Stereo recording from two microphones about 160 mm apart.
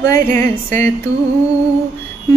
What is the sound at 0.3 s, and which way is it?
Music, 15° left (ahead or behind).